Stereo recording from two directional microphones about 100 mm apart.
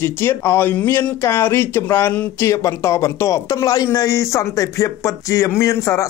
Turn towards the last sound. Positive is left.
turn(degrees=30)  # may be behind; listen again after turning